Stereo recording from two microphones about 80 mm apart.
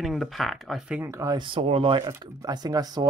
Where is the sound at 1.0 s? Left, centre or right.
Right.